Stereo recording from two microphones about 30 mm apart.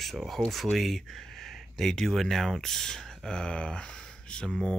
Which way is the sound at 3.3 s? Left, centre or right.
Left.